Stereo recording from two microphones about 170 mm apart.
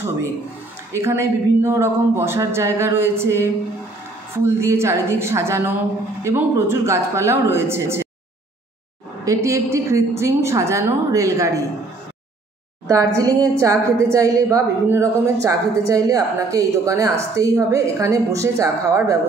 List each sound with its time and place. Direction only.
0.9 s speech: 15° right (ahead or behind)
9.2 s speech: 20° right (ahead or behind)
12.8 s a woman's voice: 20° right (ahead or behind)